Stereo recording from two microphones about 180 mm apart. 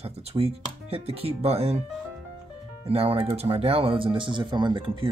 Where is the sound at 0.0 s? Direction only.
35° right (ahead or behind).